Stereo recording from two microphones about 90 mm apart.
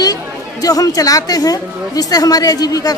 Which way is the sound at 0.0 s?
45° left (ahead or behind).